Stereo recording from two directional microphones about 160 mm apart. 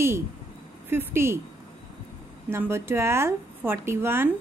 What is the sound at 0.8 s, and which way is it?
Speech, 15° right (ahead or behind).